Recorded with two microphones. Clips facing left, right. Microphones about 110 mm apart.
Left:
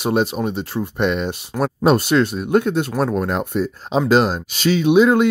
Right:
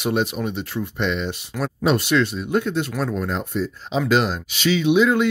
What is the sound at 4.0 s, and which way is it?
Speech, 35° left (ahead or behind).